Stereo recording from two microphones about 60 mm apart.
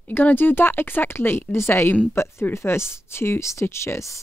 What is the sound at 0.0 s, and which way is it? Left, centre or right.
A woman's voice, left.